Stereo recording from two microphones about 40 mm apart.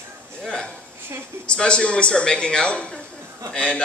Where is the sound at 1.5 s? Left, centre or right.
Left.